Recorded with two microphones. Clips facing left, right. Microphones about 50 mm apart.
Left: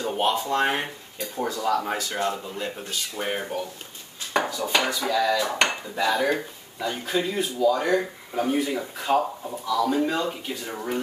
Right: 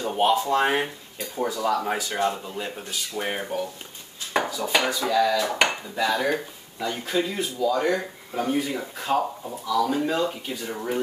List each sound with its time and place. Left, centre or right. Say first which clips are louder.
0.0 s speech: right 3 dB; centre